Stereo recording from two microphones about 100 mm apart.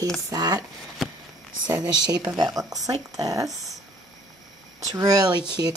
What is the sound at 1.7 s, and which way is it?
Speech, 40° right (ahead or behind).